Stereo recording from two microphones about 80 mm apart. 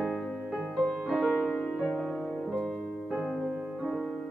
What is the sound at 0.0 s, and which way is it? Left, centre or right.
Music, centre.